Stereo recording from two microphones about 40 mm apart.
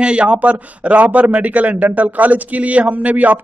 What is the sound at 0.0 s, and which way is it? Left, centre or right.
Speech, right.